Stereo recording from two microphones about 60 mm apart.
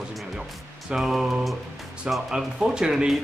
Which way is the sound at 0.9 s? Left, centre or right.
Centre.